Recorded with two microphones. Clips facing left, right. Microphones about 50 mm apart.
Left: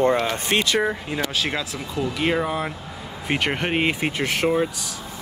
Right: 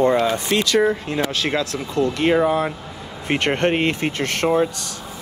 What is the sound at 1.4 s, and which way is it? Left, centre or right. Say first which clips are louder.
Speech: right 4 dB; centre.